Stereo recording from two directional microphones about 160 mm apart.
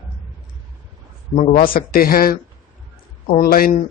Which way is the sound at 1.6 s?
65° left (ahead or behind).